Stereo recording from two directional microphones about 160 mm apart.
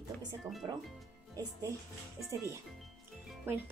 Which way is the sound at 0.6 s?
25° right (ahead or behind).